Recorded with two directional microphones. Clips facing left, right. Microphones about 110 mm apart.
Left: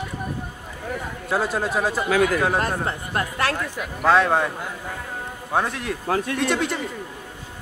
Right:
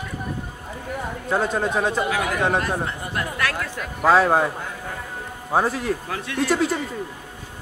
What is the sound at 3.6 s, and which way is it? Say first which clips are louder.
Speech: left 1 dB; 10° left (ahead or behind).